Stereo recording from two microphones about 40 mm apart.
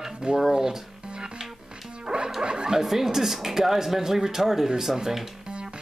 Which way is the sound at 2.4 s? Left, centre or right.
Right.